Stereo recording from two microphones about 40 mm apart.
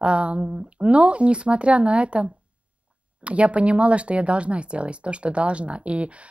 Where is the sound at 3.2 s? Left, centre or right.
Right.